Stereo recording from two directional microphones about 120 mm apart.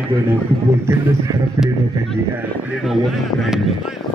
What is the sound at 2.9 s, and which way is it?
Speech, centre (ahead or behind).